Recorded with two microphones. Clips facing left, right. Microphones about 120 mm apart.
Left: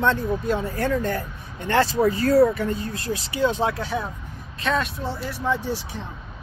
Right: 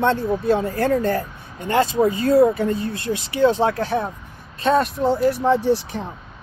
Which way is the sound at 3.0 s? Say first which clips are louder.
Right 3 dB; 30° left (ahead or behind).